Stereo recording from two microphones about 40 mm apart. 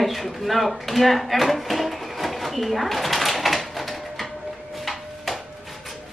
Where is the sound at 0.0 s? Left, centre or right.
Centre.